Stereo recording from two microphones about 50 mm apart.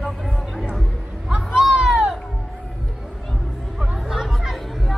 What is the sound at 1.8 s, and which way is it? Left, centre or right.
Music, centre.